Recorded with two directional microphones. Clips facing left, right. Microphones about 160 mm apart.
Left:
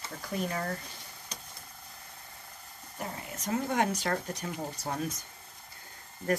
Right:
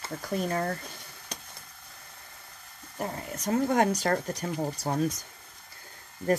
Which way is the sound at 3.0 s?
45° right (ahead or behind).